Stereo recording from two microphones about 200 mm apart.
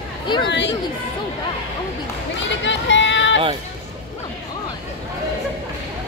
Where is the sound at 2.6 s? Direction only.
65° left (ahead or behind).